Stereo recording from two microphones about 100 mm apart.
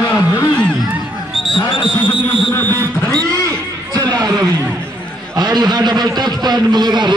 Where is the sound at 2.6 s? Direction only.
35° right (ahead or behind).